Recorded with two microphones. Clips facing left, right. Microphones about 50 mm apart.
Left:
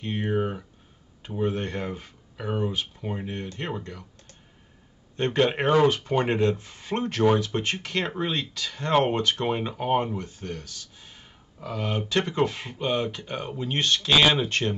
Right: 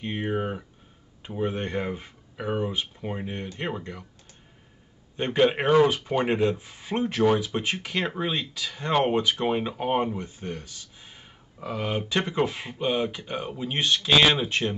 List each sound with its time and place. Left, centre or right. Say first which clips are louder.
0.0 s speech: left 1 dB; centre
5.1 s speech: right 1 dB; centre
10.1 s speech: even; centre
12.1 s speech: left 2 dB; centre